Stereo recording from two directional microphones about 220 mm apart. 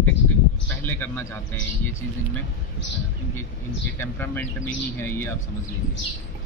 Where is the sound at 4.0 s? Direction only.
10° left (ahead or behind).